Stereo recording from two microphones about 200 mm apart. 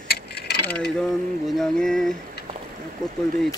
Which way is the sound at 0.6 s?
5° left (ahead or behind).